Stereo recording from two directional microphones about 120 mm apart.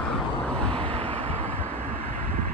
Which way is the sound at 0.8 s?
55° right (ahead or behind).